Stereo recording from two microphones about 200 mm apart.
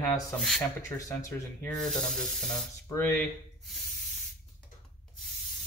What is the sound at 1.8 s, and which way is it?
Sizzle, 5° left (ahead or behind).